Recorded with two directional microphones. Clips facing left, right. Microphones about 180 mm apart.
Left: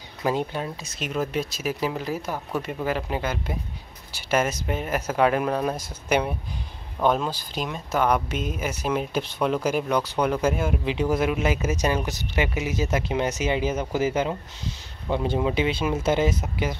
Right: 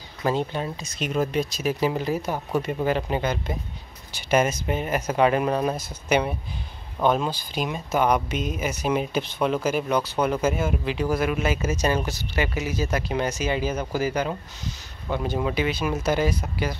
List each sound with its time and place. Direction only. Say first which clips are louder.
0.2 s speech: right 1 dB; 10° left (ahead or behind); by 5.8 s 5° right (ahead or behind)
5.8 s speech: right 1 dB; 10° left (ahead or behind)
7.0 s speech: right 1 dB; centre (ahead or behind)
10.9 s speech: left 2 dB; 20° left (ahead or behind)